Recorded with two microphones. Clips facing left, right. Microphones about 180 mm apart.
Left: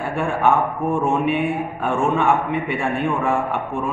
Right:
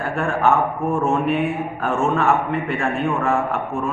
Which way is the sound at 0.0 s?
Centre (ahead or behind).